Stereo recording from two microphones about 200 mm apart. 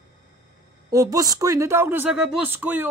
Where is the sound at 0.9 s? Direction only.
15° right (ahead or behind).